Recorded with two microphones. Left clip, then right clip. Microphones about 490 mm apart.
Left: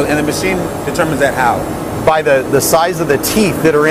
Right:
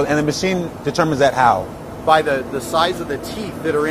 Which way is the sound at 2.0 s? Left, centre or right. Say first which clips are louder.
Left 4 dB; left.